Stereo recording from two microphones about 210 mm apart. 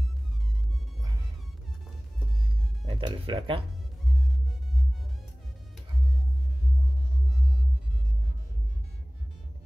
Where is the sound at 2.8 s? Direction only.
25° right (ahead or behind).